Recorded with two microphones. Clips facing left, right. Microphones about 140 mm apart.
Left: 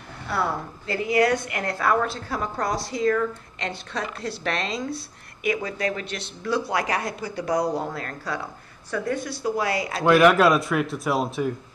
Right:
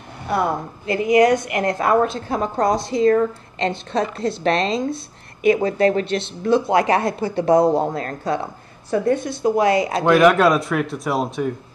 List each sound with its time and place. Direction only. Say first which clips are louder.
0.3 s speech: right 5 dB; 20° right (ahead or behind)
10.0 s a man's voice: right 2 dB; centre (ahead or behind)